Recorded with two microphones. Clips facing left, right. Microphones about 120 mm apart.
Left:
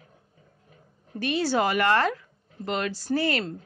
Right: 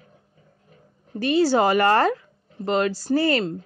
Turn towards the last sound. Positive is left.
turn(degrees=-35)  # may be behind; listen again after turning